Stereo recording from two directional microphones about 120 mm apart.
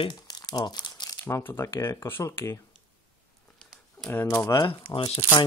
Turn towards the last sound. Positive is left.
turn(degrees=55)  # may be behind; listen again after turning